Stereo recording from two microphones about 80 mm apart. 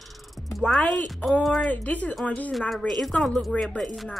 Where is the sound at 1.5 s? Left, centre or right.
Centre.